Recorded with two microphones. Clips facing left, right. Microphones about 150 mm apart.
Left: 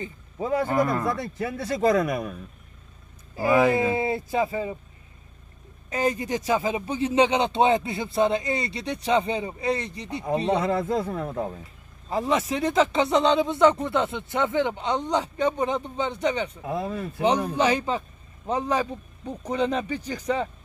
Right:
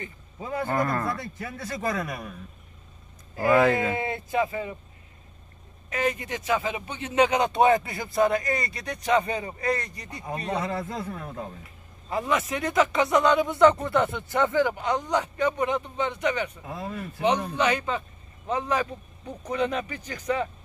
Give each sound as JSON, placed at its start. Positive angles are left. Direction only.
{"t": 0.7, "sound": "speech", "side_deg": 15}
{"t": 1.9, "sound": "speech", "side_deg": 40}
{"t": 3.3, "sound": "speech", "side_deg": 10}
{"t": 3.9, "sound": "speech", "side_deg": 30}
{"t": 5.9, "sound": "speech", "side_deg": 30}